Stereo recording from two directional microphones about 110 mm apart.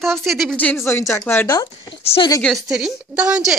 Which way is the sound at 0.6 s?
20° left (ahead or behind).